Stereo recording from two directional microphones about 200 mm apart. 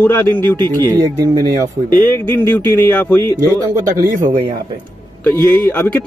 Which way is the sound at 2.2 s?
10° left (ahead or behind).